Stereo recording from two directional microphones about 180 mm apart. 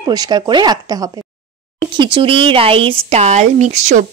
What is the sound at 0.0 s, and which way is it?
Speech, 20° right (ahead or behind).